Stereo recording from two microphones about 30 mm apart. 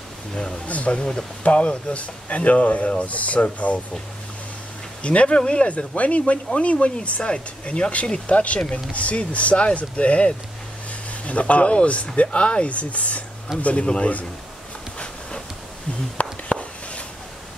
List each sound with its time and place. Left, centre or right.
0.3 s speech: left
0.7 s speech: left
0.9 s speech: left
1.4 s speech: left
5.0 s speech: left
8.5 s speech: left
8.9 s speech: left
16.2 s a sound: left